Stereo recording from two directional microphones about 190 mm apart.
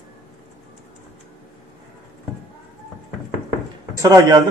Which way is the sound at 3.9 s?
15° right (ahead or behind).